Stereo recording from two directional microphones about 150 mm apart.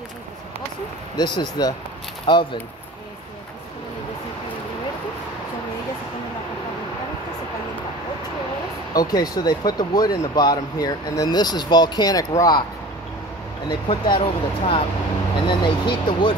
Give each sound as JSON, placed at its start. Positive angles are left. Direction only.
{"t": 1.1, "sound": "speech", "side_deg": 30}
{"t": 8.9, "sound": "speech", "side_deg": 25}
{"t": 13.7, "sound": "speech", "side_deg": 30}